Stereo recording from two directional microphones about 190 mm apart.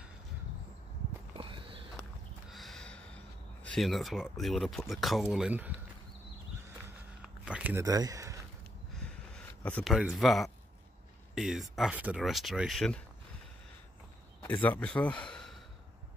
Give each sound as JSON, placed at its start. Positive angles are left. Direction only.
{"t": 1.3, "sound": "horse", "side_deg": -25}
{"t": 2.5, "sound": "snort", "side_deg": 0}
{"t": 3.6, "sound": "speech", "side_deg": 0}
{"t": 7.2, "sound": "a sound", "side_deg": -5}
{"t": 8.9, "sound": "a sound", "side_deg": 5}
{"t": 11.3, "sound": "speech", "side_deg": 0}
{"t": 14.4, "sound": "speech", "side_deg": 10}